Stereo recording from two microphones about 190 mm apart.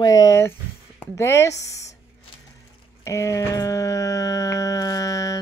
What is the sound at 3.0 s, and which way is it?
Speech, 15° left (ahead or behind).